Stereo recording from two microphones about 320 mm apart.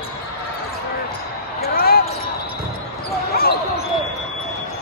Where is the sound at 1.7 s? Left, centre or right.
Left.